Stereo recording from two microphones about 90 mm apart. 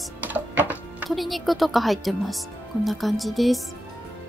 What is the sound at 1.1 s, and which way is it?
A woman's voice, centre (ahead or behind).